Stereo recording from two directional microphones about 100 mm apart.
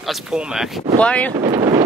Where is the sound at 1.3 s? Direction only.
70° right (ahead or behind).